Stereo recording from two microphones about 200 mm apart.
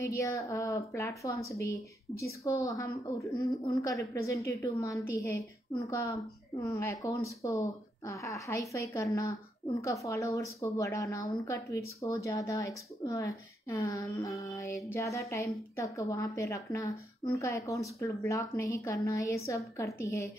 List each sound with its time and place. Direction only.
0.0 s a woman's voice: 15° left (ahead or behind)